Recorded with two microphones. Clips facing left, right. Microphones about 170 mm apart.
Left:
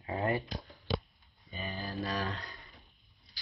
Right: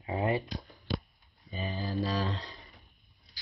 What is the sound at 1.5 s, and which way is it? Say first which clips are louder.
Speech: right 4 dB; 35° right (ahead or behind).